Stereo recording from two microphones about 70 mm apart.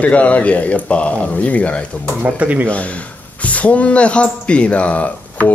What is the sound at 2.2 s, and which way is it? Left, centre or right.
Speech, right.